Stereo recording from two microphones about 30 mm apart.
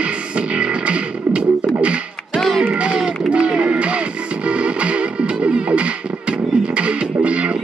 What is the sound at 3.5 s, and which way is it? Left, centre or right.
Music, right.